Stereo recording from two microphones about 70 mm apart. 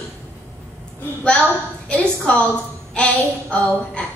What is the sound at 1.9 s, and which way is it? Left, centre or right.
A woman's voice, centre.